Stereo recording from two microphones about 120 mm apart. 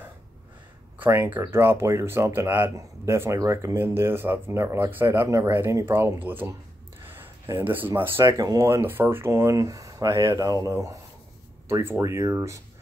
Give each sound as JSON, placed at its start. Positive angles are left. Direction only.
{"t": 0.9, "sound": "speech", "side_deg": -15}
{"t": 7.6, "sound": "speech", "side_deg": -15}